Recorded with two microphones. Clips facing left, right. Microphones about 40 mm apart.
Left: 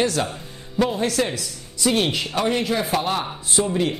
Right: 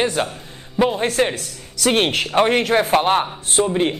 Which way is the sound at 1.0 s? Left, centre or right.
Right.